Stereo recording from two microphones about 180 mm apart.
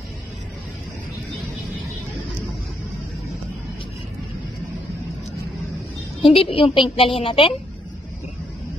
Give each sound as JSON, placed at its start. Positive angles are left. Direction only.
{"t": 6.2, "sound": "a woman's voice", "side_deg": 30}